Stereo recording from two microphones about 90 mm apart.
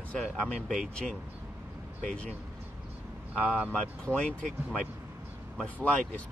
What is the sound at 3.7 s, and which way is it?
Speech, 15° left (ahead or behind).